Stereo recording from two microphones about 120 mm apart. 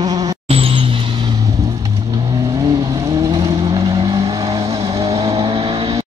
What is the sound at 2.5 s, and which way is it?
Vehicle, 30° right (ahead or behind).